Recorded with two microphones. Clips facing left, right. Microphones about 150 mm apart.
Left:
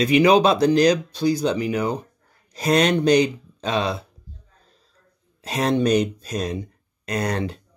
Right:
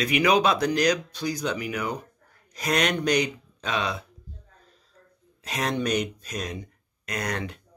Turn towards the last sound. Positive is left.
turn(degrees=30)  # may be behind; listen again after turning